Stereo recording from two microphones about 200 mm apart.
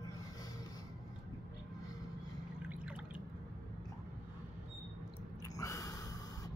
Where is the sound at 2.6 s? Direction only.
5° right (ahead or behind).